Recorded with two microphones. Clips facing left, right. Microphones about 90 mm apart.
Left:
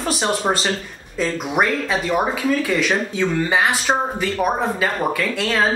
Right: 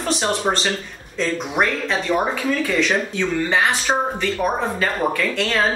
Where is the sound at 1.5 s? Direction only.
10° left (ahead or behind).